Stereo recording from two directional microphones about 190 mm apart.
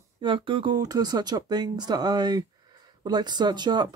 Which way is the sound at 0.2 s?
25° right (ahead or behind).